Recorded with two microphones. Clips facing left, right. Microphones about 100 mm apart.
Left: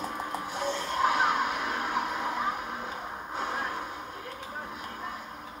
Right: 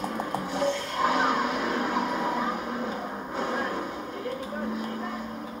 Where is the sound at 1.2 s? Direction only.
35° right (ahead or behind).